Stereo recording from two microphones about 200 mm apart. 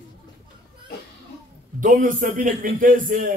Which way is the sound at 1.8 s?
40° right (ahead or behind).